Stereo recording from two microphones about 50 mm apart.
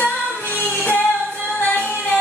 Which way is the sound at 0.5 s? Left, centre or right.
Left.